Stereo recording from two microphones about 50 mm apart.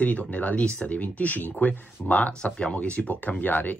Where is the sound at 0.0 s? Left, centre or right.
Left.